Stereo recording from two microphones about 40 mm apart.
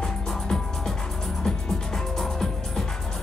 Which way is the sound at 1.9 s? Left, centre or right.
Centre.